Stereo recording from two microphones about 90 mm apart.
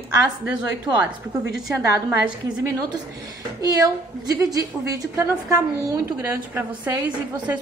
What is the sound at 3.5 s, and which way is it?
A woman's voice, 40° right (ahead or behind).